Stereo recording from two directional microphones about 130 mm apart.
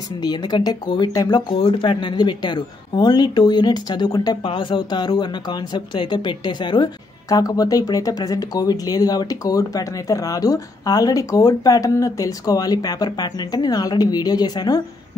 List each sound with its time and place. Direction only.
0.2 s a woman's voice: 35° left (ahead or behind)
1.5 s speech: 50° left (ahead or behind)
1.8 s a woman's voice: 40° left (ahead or behind)